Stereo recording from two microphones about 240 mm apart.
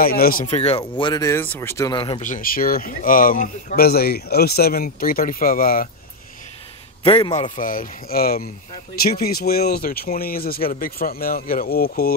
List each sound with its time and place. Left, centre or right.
0.0 s speech: left
7.0 s a man's voice: left
7.5 s speech: left